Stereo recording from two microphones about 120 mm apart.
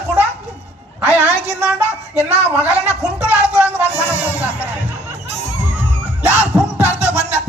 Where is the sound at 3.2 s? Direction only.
15° right (ahead or behind).